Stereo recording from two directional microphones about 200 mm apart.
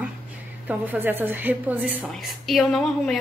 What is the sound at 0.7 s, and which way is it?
A woman's voice, 10° right (ahead or behind).